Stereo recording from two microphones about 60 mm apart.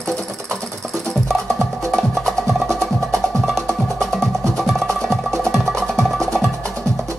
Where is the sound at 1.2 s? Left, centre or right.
Centre.